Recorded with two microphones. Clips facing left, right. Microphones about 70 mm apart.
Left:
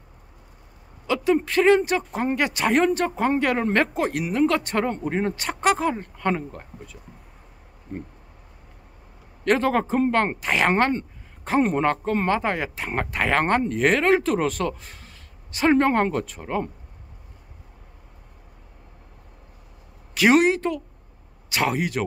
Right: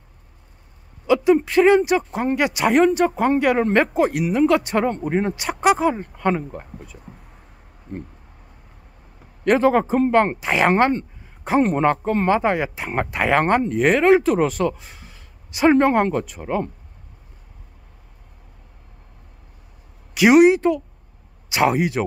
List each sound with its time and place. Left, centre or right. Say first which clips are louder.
1.0 s speech: right 5 dB; centre
7.9 s speech: right 2 dB; centre
9.4 s speech: right 4 dB; centre
20.2 s speech: right 5 dB; centre